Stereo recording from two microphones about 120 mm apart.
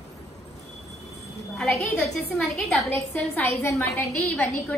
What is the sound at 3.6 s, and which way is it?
Speech, 20° left (ahead or behind).